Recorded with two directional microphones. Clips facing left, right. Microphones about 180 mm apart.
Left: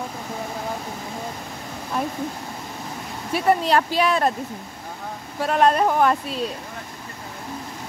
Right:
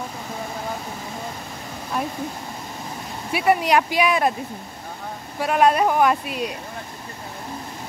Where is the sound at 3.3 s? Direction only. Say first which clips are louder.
Even; 10° right (ahead or behind).